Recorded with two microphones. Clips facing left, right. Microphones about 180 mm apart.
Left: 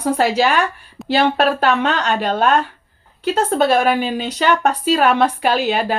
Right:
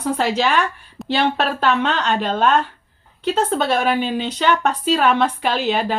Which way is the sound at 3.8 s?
10° left (ahead or behind).